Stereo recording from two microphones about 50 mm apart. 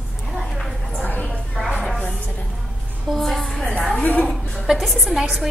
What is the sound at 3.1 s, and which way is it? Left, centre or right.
Music, centre.